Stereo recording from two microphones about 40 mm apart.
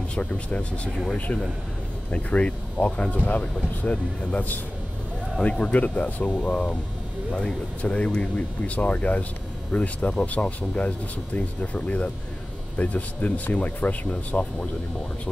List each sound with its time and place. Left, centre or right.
0.1 s speech: left